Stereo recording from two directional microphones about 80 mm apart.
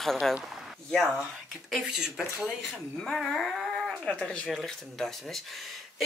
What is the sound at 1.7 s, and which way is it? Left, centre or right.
Speech, centre.